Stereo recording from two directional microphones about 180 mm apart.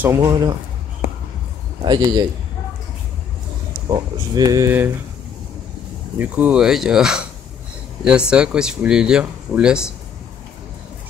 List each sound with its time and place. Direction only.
0.0 s a man's voice: 15° right (ahead or behind)
1.8 s speech: 25° right (ahead or behind)
3.9 s speech: 20° right (ahead or behind)
6.1 s speech: 10° right (ahead or behind)